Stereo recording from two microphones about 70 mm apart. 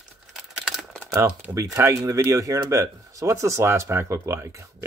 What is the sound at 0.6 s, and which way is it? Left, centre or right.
Typing, centre.